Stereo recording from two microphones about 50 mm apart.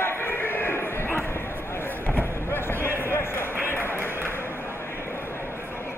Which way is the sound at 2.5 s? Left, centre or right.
Left.